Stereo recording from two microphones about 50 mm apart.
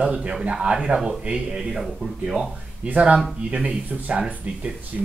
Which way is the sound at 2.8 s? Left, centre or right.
Right.